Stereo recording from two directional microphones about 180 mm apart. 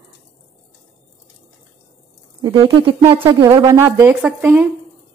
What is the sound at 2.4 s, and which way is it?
Speech, 25° right (ahead or behind).